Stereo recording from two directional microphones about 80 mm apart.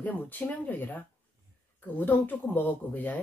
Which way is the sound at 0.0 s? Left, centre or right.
Left.